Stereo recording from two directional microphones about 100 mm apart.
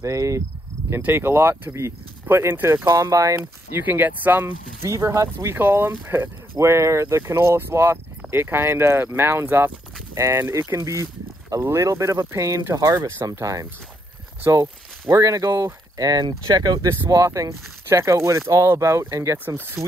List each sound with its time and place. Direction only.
0.0 s speech: 30° right (ahead or behind)
3.3 s speech: 20° right (ahead or behind)
4.8 s speech: 30° right (ahead or behind)